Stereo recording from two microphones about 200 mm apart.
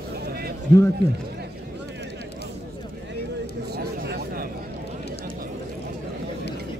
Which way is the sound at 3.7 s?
50° right (ahead or behind).